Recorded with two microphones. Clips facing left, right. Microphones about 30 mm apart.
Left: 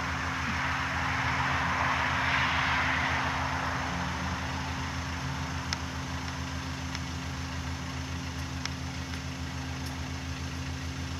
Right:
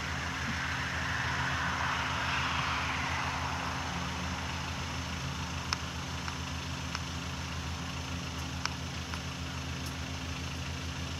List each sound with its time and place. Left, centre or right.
0.0 s vehicle: centre